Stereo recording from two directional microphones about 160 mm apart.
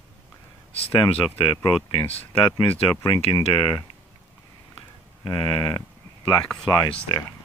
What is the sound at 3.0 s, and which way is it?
Speech, 30° left (ahead or behind).